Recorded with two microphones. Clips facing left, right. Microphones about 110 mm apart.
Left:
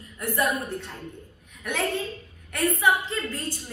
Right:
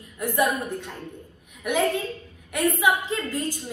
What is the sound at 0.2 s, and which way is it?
A woman's voice, 15° right (ahead or behind).